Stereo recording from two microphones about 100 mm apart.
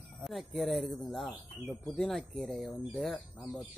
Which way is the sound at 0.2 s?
Centre (ahead or behind).